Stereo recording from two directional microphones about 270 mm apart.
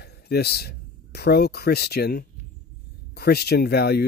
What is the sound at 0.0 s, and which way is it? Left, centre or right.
Speech, left.